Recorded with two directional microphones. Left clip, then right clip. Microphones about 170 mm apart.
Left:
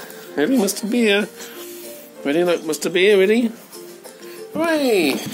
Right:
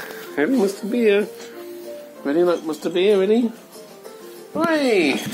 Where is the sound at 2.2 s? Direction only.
30° left (ahead or behind).